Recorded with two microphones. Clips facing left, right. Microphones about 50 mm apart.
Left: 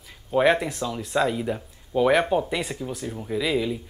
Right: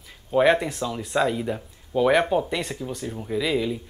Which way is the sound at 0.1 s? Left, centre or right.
Centre.